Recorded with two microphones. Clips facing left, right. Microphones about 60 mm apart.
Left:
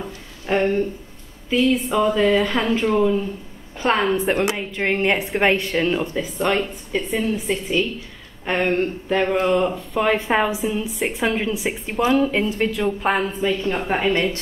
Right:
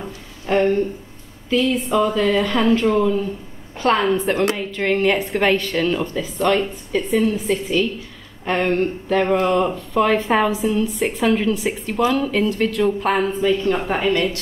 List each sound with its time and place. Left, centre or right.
0.5 s a woman's voice: centre
7.0 s a woman's voice: centre